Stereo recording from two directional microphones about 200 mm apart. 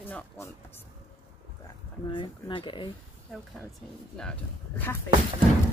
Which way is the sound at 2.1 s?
25° left (ahead or behind).